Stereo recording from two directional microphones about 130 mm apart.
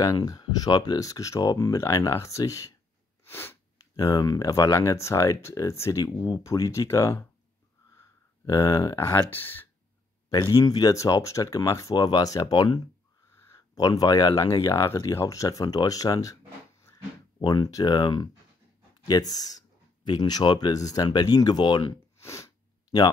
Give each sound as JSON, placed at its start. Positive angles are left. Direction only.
{"t": 0.0, "sound": "speech", "side_deg": 25}
{"t": 3.3, "sound": "sniff", "side_deg": 15}
{"t": 3.9, "sound": "speech", "side_deg": 30}
{"t": 10.5, "sound": "speech", "side_deg": 30}
{"t": 13.3, "sound": "speech", "side_deg": 20}
{"t": 17.4, "sound": "speech", "side_deg": 35}
{"t": 22.2, "sound": "sneeze", "side_deg": 25}